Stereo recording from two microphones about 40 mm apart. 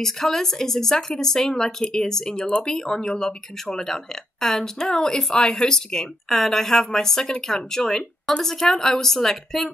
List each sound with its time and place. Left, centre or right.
0.0 s speech: centre
6.2 s speech: centre